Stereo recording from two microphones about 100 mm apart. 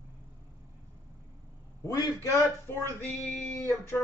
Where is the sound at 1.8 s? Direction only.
35° left (ahead or behind).